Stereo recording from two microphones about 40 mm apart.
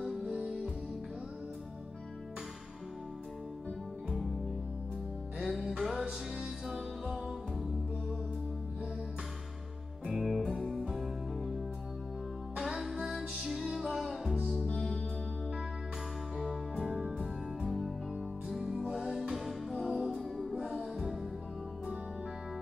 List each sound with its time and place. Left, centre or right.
5.4 s music: centre
6.0 s music: centre
10.0 s music: centre
12.5 s music: centre
16.3 s music: centre
17.6 s music: centre
20.2 s music: centre
20.5 s music: centre